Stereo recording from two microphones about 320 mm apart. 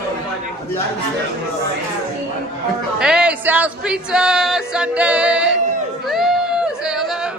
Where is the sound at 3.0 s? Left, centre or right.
Centre.